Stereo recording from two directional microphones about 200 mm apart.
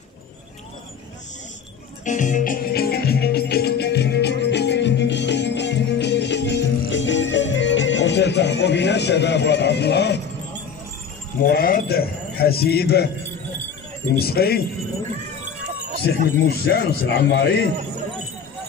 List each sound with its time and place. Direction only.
2.0 s music: 40° left (ahead or behind); by 10.2 s 55° left (ahead or behind)
11.4 s a man's voice: 50° left (ahead or behind)
14.1 s a man's voice: 50° left (ahead or behind)
16.3 s a man's voice: 50° left (ahead or behind)